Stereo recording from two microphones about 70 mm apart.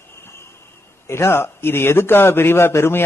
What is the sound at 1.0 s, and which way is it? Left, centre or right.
A man's voice, left.